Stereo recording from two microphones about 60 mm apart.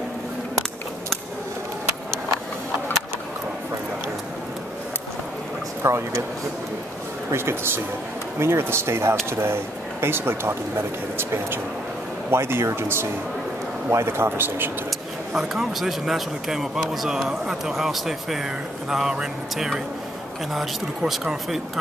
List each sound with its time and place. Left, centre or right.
5.8 s speech: right
7.3 s speech: right
12.3 s speech: right
14.9 s speech: centre
21.1 s speech: centre